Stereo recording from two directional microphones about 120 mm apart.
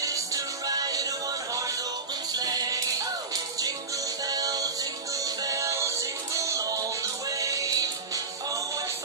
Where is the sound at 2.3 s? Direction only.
30° right (ahead or behind).